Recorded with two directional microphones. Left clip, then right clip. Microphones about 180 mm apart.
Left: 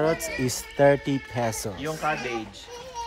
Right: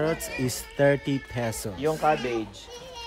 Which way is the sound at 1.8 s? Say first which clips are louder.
Right 7 dB; 55° right (ahead or behind).